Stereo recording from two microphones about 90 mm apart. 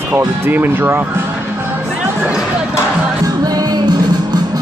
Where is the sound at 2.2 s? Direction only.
10° right (ahead or behind).